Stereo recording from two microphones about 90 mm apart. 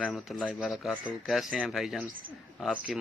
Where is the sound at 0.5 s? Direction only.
5° right (ahead or behind).